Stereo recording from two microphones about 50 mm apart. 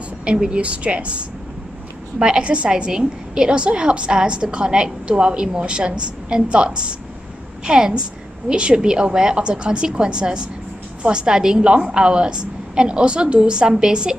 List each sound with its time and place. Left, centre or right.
0.2 s a woman's voice: right